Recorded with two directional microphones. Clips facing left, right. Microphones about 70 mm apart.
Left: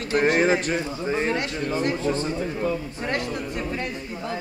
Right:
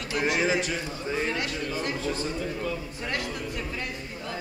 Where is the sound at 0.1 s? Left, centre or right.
Left.